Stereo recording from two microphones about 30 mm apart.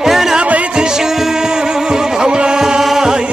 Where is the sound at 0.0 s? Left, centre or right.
Centre.